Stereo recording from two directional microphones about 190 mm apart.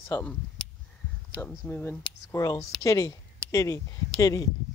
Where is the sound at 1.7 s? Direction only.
10° left (ahead or behind).